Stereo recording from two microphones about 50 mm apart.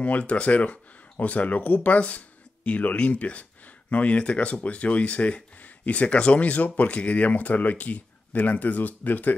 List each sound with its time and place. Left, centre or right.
0.0 s speech: left